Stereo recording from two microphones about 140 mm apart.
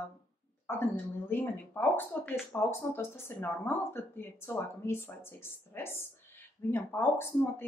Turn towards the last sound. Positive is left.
turn(degrees=15)  # may be behind; listen again after turning